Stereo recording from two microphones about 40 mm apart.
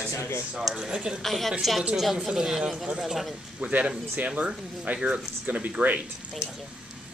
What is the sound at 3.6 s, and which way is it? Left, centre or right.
Speech, right.